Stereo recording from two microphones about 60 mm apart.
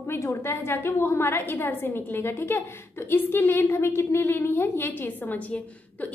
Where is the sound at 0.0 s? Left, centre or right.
Left.